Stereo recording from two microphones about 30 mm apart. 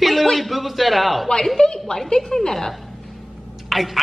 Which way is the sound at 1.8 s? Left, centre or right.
Left.